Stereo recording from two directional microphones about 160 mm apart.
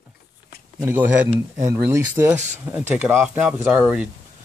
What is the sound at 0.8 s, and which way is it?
Speech, 15° right (ahead or behind).